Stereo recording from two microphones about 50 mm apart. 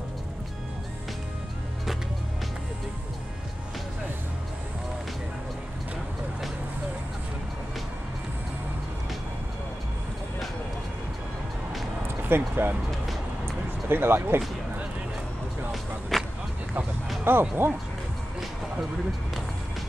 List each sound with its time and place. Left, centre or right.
12.2 s speech: right
13.8 s speech: right
15.7 s music: centre
17.2 s speech: right